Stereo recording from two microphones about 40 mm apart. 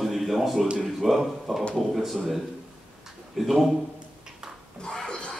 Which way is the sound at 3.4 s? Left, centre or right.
Centre.